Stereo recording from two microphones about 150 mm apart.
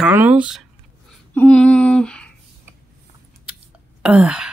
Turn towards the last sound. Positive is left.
turn(degrees=-10)  # may be behind; listen again after turning